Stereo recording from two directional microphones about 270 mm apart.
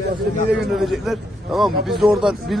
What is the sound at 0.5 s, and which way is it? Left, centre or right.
A man's voice, centre.